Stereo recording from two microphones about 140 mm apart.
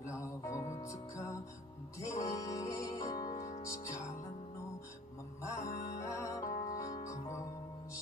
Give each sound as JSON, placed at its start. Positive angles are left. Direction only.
{"t": 0.2, "sound": "music", "side_deg": 20}
{"t": 2.0, "sound": "music", "side_deg": 25}
{"t": 5.7, "sound": "music", "side_deg": 20}